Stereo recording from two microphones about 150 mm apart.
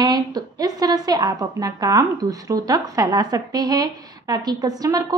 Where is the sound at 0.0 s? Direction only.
25° right (ahead or behind).